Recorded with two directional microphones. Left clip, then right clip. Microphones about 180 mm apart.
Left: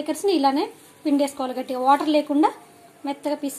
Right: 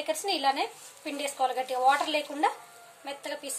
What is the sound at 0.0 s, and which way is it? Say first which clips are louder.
Speech: left 7 dB; 25° left (ahead or behind).